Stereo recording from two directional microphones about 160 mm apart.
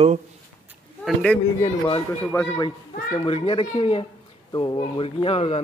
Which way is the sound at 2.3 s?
15° left (ahead or behind).